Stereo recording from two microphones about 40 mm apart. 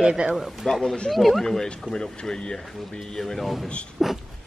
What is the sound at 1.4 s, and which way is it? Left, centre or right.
Speech, centre.